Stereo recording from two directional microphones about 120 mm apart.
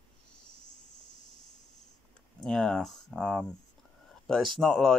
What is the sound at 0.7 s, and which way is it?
Cricket, 90° left.